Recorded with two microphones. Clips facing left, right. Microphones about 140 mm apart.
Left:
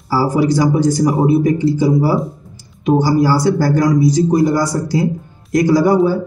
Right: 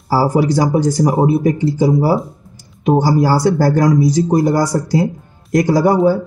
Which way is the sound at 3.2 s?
40° right (ahead or behind).